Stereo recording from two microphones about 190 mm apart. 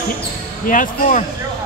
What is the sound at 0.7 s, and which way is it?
Speech, 45° left (ahead or behind).